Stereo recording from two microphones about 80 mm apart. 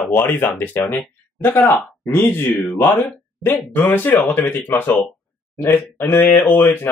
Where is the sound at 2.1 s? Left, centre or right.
Left.